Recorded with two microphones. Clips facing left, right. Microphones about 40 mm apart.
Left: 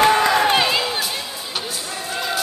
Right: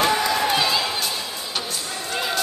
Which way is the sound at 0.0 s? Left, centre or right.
Left.